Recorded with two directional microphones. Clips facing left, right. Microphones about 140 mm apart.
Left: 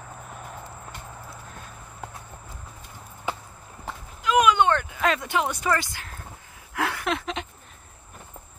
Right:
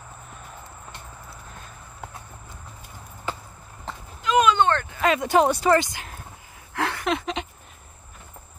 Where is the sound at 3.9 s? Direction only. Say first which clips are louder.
Even; 10° left (ahead or behind).